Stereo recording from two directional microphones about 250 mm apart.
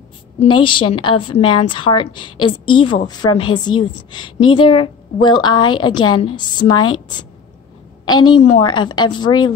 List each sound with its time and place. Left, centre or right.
0.6 s a woman's voice: centre